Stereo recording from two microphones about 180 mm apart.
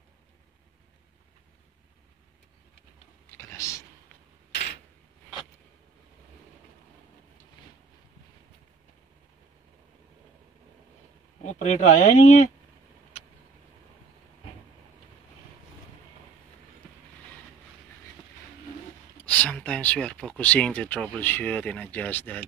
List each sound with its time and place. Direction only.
3.3 s a sound: 15° left (ahead or behind)
11.4 s speech: 40° left (ahead or behind)
19.2 s speech: 5° left (ahead or behind)